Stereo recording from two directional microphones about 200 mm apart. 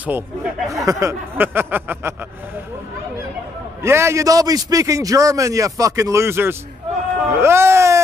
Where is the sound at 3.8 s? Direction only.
15° right (ahead or behind).